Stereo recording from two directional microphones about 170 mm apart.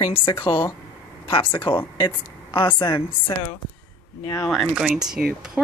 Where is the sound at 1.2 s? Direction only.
30° left (ahead or behind).